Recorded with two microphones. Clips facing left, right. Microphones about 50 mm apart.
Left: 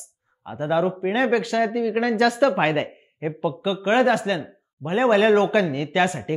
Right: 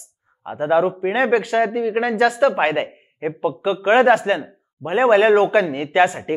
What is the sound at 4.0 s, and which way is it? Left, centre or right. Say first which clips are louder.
Speech: right 5 dB; right.